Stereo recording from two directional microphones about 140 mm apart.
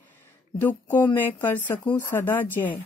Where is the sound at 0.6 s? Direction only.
15° left (ahead or behind).